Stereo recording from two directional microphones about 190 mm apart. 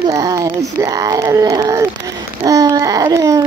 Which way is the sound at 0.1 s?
20° right (ahead or behind).